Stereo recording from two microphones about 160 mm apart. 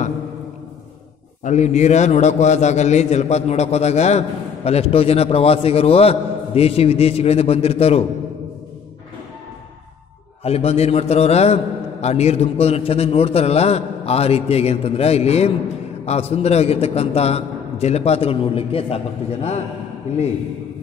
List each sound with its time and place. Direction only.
1.4 s a man's voice: 45° left (ahead or behind)
10.4 s a man's voice: 40° left (ahead or behind)